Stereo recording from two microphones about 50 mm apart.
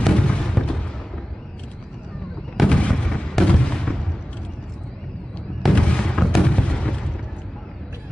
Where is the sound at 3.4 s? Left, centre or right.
Centre.